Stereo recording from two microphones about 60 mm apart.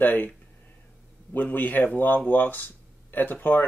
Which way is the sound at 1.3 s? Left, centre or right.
Left.